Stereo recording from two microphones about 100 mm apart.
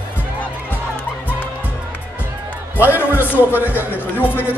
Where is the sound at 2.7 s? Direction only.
20° left (ahead or behind).